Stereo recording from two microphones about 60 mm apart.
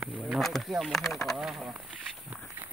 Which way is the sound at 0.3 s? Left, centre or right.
Centre.